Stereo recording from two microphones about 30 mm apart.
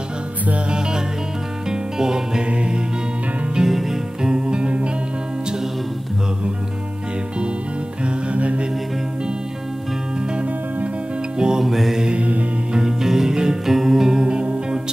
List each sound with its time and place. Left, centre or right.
0.7 s music: right
2.4 s music: right
3.6 s music: centre
4.2 s music: right
8.0 s music: right
11.3 s music: right
11.6 s mantra: centre
12.1 s music: right
13.0 s music: centre
14.2 s music: right